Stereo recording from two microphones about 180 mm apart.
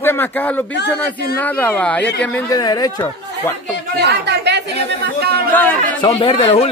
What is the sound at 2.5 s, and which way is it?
Speech, 20° left (ahead or behind).